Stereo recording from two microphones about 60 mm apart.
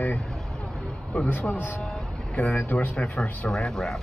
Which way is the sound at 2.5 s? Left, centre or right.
Left.